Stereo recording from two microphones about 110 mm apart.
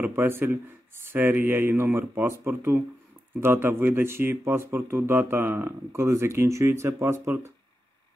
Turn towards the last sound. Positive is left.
turn(degrees=-20)  # may be behind; listen again after turning